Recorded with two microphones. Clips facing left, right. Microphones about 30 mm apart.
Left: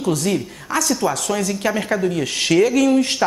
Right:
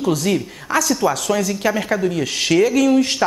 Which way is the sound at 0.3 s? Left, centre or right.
Centre.